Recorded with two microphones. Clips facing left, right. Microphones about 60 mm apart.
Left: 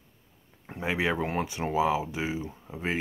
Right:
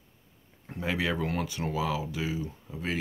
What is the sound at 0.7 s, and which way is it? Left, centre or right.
Speech, left.